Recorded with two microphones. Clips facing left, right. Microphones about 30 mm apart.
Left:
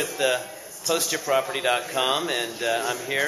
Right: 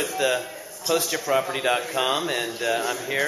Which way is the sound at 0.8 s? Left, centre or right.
Centre.